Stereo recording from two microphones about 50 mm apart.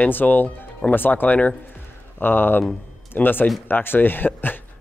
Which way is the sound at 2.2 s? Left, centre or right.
Left.